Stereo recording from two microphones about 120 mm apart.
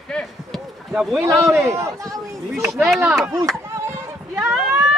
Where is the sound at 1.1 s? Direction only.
25° right (ahead or behind).